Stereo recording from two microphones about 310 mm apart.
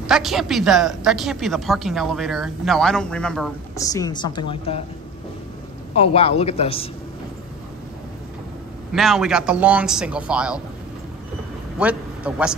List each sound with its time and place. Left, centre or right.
0.0 s a woman's voice: centre
5.9 s a man's voice: centre
8.9 s a woman's voice: centre
11.8 s a man's voice: centre